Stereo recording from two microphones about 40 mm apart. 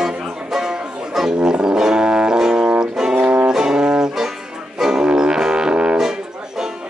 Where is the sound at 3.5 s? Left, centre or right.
Centre.